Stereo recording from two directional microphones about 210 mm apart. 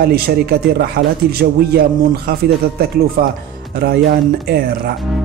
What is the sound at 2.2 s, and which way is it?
Speech, 50° right (ahead or behind).